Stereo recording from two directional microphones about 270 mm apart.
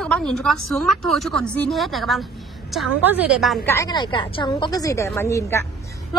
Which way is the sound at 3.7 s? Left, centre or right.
Centre.